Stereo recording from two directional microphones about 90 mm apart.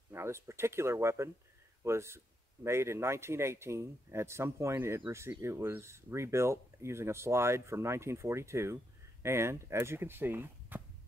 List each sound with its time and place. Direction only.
0.1 s speech: 30° right (ahead or behind)